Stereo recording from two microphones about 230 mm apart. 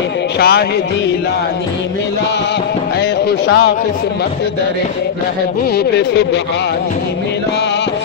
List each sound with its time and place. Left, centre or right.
0.4 s speech: left
3.0 s music: left
5.8 s speech: left